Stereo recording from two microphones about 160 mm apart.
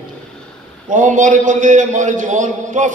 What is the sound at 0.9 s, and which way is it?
A man's voice, 50° right (ahead or behind).